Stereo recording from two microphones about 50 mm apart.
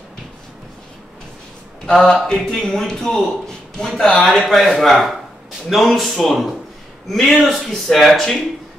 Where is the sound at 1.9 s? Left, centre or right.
Centre.